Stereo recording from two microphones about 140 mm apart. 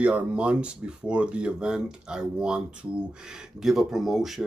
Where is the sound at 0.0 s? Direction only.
10° right (ahead or behind).